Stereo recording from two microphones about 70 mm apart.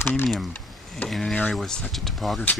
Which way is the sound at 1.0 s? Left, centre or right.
Centre.